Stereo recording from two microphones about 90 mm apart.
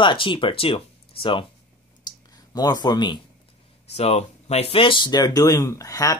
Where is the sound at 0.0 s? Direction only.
65° left (ahead or behind); by 1.4 s 85° left.